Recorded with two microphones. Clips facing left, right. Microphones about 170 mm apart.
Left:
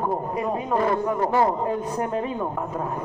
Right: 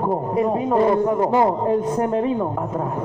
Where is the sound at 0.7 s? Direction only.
20° right (ahead or behind).